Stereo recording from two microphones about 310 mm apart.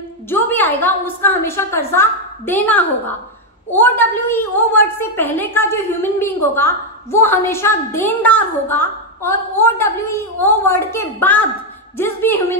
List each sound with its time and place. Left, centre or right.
0.3 s a woman's voice: centre